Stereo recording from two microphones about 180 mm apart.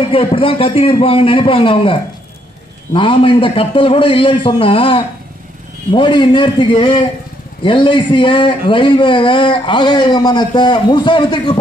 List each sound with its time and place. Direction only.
0.1 s a man's voice: 30° left (ahead or behind)